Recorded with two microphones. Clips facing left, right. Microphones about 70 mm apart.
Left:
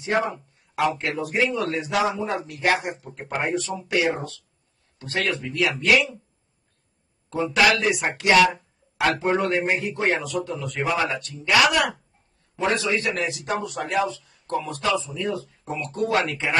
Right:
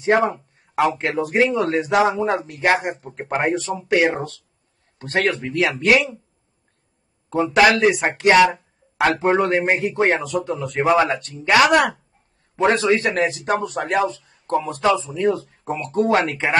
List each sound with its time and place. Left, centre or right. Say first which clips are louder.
0.7 s a man's voice: right 4 dB; right
5.1 s a man's voice: right 5 dB; right
5.4 s speech: right 4 dB; right
7.5 s a man's voice: right 5 dB; right
15.2 s speech: right 8 dB; right